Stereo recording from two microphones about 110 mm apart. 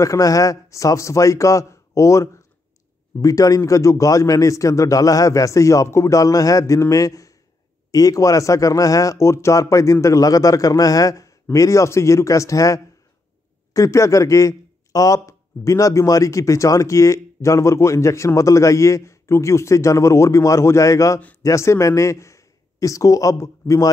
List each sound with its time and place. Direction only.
0.0 s a man's voice: 30° left (ahead or behind)